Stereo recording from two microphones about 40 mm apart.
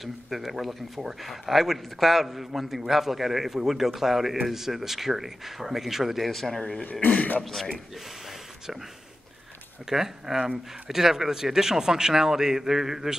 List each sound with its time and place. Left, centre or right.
0.0 s a man's voice: centre
6.6 s speech: left
7.4 s speech: centre
9.8 s a man's voice: centre